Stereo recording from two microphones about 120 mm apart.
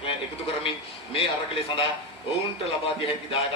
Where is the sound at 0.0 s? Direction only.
50° left (ahead or behind).